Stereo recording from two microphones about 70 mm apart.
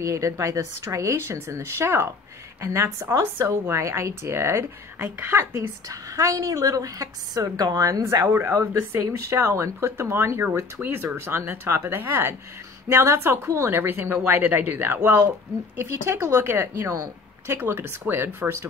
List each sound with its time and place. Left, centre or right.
0.0 s a woman's voice: right
8.0 s speech: right
10.8 s a woman's voice: right